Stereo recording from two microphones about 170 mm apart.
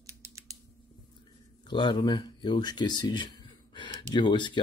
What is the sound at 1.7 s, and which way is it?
Speech, 25° left (ahead or behind).